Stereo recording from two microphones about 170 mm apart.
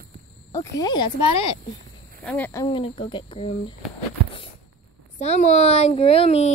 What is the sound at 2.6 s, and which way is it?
Speech, 30° left (ahead or behind).